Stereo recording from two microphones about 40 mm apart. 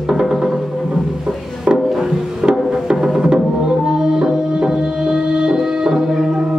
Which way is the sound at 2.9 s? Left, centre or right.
Centre.